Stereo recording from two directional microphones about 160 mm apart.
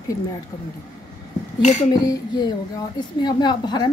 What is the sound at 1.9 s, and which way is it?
A woman's voice, 25° left (ahead or behind).